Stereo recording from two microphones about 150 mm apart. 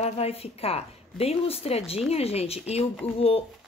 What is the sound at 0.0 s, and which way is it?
Speech, 40° left (ahead or behind).